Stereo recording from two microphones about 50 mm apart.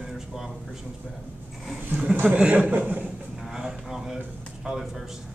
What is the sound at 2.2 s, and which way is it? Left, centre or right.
Speech, right.